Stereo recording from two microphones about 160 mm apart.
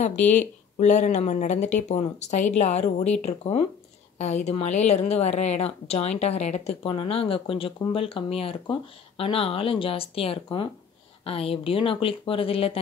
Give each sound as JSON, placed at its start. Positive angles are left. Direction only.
{"t": 0.3, "sound": "a woman's voice", "side_deg": 50}